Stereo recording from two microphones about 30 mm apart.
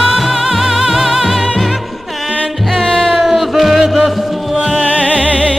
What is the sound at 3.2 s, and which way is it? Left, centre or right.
Music, centre.